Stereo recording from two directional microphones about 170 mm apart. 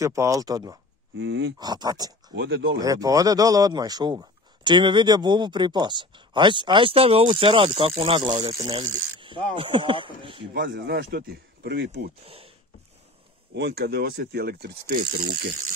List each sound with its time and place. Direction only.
0.0 s speech: 20° right (ahead or behind)
1.2 s speech: 90° right
1.6 s speech: 25° right (ahead or behind)
2.3 s speech: 90° right
2.8 s speech: 20° right (ahead or behind)
10.5 s speech: 80° right
12.3 s a sound: 35° right (ahead or behind)
13.6 s speech: 75° right (ahead or behind)